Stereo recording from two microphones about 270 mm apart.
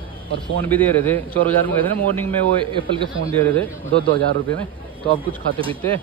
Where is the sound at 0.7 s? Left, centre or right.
Centre.